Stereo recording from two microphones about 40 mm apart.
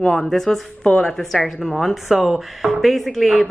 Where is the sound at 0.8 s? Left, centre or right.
Left.